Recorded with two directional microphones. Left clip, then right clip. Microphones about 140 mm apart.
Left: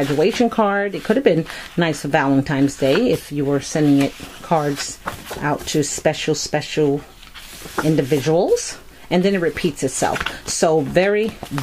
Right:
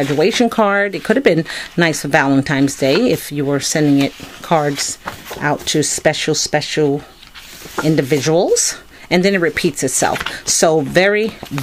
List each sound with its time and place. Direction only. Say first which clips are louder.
0.2 s speech: right 3 dB; 30° right (ahead or behind)
4.7 s drawer open or close: right 4 dB; 5° right (ahead or behind)
5.4 s speech: right 4 dB; 30° right (ahead or behind)
10.1 s speech: right 3 dB; 5° right (ahead or behind)
10.6 s speech: right 3 dB; 30° right (ahead or behind)